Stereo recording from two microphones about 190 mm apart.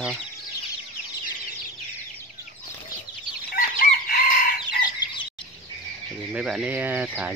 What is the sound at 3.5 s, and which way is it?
Fowl, 50° left (ahead or behind).